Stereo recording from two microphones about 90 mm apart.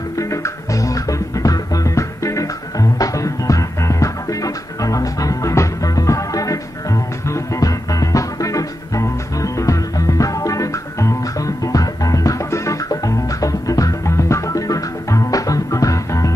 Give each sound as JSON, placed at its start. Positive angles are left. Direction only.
{"t": 0.2, "sound": "music", "side_deg": 35}